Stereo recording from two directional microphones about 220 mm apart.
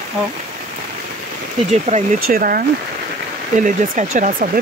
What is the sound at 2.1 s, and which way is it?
Speech, 40° right (ahead or behind).